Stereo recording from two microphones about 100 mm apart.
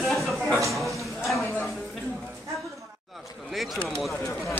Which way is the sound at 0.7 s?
Centre (ahead or behind).